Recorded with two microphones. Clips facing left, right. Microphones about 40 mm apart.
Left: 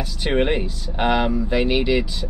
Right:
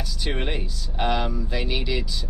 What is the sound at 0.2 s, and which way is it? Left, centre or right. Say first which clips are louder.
Speech: left 9 dB; left.